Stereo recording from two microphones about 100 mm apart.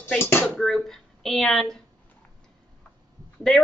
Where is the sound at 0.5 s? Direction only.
5° left (ahead or behind).